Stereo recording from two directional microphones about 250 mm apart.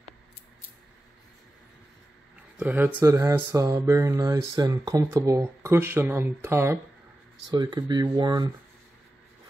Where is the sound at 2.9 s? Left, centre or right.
Centre.